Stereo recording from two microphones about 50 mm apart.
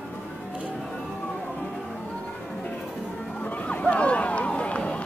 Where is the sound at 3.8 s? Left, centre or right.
Left.